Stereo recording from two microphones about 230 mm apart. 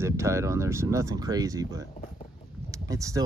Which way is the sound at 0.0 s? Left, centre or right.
Centre.